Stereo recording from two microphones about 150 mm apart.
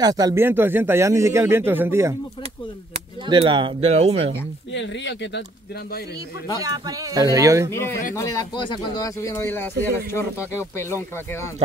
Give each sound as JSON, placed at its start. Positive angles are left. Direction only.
{"t": 0.0, "sound": "speech", "side_deg": -25}
{"t": 3.3, "sound": "speech", "side_deg": -30}
{"t": 6.6, "sound": "speech", "side_deg": -25}
{"t": 8.1, "sound": "speech", "side_deg": 20}